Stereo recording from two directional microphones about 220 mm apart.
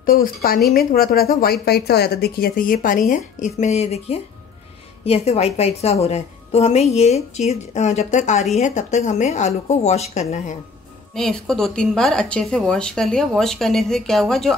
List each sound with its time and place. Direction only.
0.0 s a woman's voice: 40° left (ahead or behind)
11.1 s speech: centre (ahead or behind)